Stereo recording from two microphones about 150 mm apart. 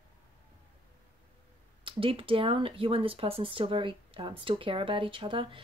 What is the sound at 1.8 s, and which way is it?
Speech, 35° right (ahead or behind).